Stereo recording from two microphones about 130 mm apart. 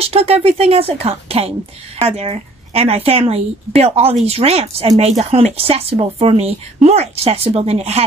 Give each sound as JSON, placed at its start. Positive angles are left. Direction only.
{"t": 0.1, "sound": "speech", "side_deg": -50}